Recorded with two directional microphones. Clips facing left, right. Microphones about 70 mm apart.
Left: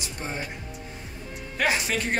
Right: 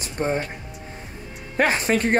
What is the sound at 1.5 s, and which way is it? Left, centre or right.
Speech, right.